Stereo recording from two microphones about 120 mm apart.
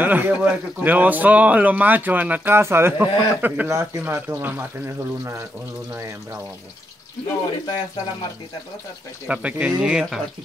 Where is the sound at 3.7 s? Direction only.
30° right (ahead or behind).